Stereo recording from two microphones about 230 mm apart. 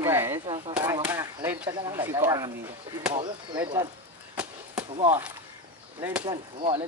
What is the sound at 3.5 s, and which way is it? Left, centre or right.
Speech, centre.